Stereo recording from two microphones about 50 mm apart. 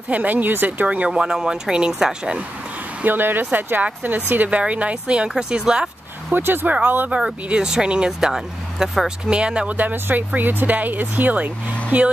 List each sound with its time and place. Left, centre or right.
0.1 s speech: right
0.8 s speech: right
3.1 s speech: right
4.5 s speech: right
6.3 s speech: right
7.4 s speech: centre
9.7 s speech: right